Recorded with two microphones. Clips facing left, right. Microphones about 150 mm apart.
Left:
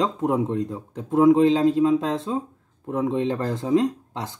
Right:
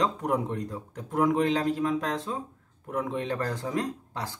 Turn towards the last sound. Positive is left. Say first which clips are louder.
# left 8 dB
turn(degrees=20)  # may be behind; listen again after turning